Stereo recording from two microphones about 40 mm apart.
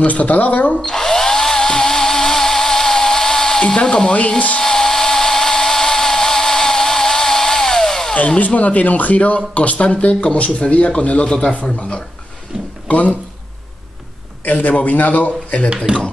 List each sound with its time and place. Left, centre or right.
0.0 s speech: left
0.8 s drill: centre
3.6 s speech: left
4.6 s a sound: centre
8.4 s speech: left
11.2 s a man's voice: centre
12.8 s speech: left
14.4 s a man's voice: left